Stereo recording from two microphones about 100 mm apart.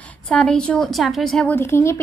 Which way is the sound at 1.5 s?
25° left (ahead or behind).